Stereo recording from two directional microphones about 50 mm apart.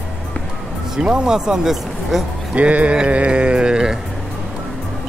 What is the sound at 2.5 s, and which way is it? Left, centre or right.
Speech, right.